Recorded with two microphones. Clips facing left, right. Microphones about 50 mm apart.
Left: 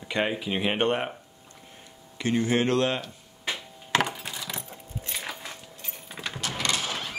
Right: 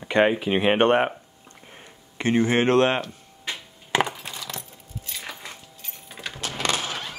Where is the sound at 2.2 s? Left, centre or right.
Right.